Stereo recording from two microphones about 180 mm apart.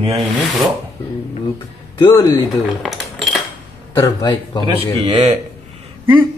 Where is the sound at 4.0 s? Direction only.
20° left (ahead or behind).